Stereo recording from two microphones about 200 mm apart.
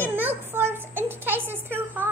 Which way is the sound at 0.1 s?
10° right (ahead or behind).